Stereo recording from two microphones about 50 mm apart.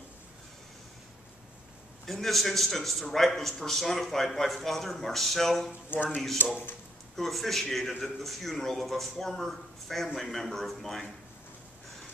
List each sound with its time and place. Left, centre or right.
2.0 s speech: centre
5.9 s speech: left
7.2 s speech: centre